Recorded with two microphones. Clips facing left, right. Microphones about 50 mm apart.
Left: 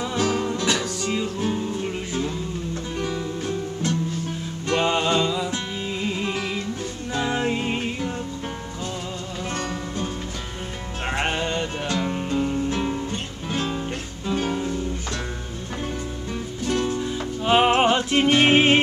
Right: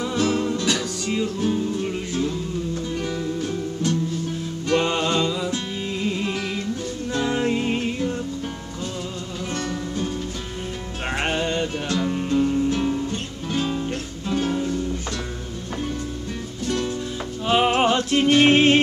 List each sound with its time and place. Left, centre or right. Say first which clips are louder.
0.0 s music: right 1 dB; centre
11.1 s music: right 1 dB; centre
16.6 s music: left 1 dB; centre